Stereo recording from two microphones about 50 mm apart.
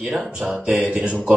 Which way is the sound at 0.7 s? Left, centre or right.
Right.